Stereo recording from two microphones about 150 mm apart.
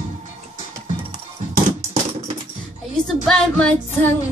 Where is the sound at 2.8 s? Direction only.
Centre (ahead or behind).